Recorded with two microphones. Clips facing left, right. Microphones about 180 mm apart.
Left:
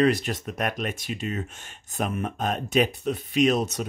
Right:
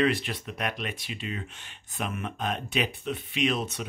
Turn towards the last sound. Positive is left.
turn(degrees=40)  # may be behind; listen again after turning